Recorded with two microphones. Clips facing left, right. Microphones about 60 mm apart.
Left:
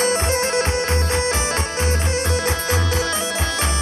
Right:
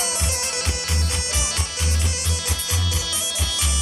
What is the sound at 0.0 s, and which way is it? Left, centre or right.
Music, left.